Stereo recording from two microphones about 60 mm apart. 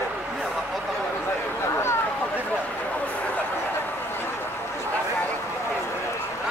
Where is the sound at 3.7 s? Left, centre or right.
Left.